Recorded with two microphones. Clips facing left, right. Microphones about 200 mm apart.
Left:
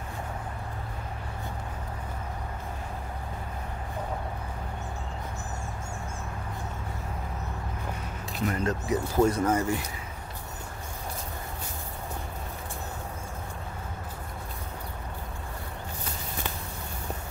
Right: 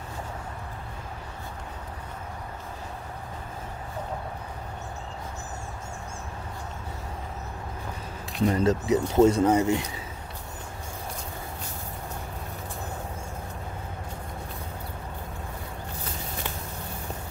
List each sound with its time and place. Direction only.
8.5 s speech: 30° right (ahead or behind)